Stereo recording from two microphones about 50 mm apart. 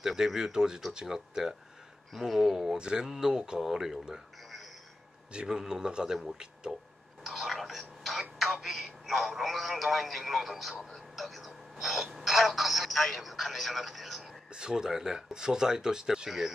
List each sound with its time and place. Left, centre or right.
0.0 s speech: centre
7.2 s a sound: centre
8.5 s telephone: centre
9.4 s speech: centre
14.2 s speech: centre